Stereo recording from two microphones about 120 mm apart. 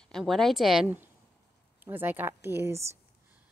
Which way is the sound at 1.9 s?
15° right (ahead or behind).